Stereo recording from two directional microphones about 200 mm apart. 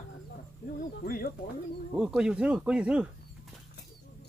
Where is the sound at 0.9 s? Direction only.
50° left (ahead or behind).